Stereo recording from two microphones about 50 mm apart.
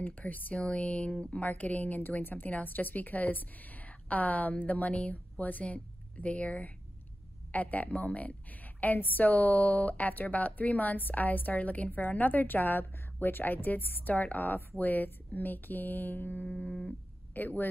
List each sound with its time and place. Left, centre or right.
0.0 s speech: left
16.4 s speech: left